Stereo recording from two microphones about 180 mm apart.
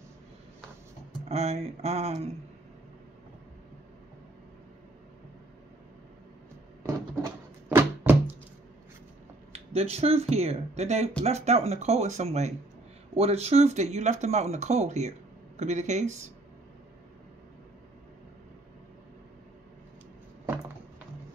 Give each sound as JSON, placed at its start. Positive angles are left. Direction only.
{"t": 1.3, "sound": "speech", "side_deg": -35}
{"t": 7.7, "sound": "a sound", "side_deg": -10}
{"t": 9.5, "sound": "speech", "side_deg": -35}